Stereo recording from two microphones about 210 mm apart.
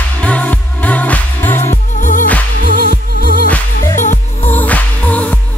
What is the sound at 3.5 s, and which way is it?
Music, 10° left (ahead or behind).